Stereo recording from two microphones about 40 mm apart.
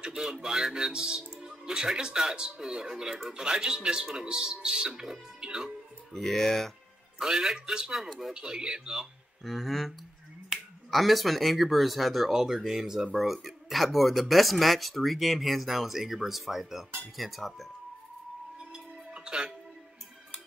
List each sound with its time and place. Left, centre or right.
0.0 s speech: centre
1.3 s music: right
2.0 s speech: centre
6.1 s speech: centre
7.2 s speech: centre
9.4 s speech: centre
18.7 s music: right